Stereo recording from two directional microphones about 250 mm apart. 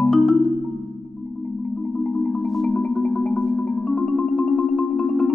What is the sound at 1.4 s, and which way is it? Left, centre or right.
Marimba, centre.